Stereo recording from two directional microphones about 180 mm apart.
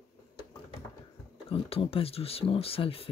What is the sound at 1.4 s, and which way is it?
Speech, 30° left (ahead or behind).